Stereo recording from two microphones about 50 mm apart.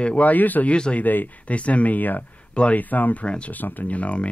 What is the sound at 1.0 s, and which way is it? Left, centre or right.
Speech, left.